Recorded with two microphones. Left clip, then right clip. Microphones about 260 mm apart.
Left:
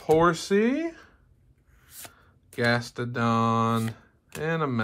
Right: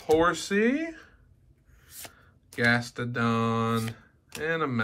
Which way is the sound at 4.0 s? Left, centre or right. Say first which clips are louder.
Left 1 dB; centre.